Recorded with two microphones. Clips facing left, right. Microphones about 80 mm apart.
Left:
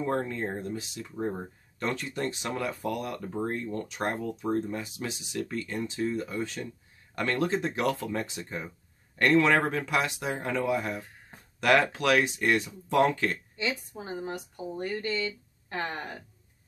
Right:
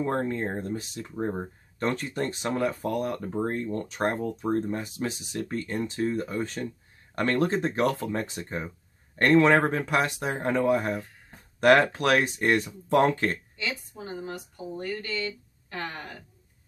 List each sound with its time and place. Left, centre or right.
0.0 s speech: right
1.1 s speech: right
1.8 s speech: right
13.6 s speech: left